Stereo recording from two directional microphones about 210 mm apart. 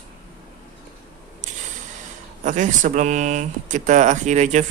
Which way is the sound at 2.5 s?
35° right (ahead or behind).